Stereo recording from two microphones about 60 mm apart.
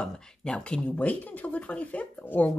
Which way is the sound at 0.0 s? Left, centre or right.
Centre.